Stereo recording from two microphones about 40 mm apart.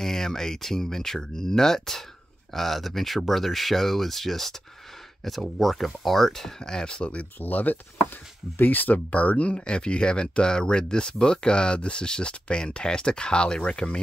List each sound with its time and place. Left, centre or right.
0.0 s speech: centre
6.6 s speech: centre
7.3 s speech: left
9.1 s speech: left